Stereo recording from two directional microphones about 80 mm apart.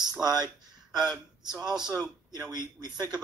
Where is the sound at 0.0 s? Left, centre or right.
Right.